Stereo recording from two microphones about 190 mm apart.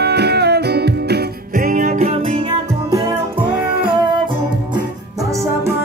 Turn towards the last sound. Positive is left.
turn(degrees=-25)  # may be behind; listen again after turning